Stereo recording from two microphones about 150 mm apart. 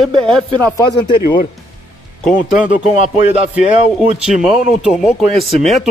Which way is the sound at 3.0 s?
50° left (ahead or behind).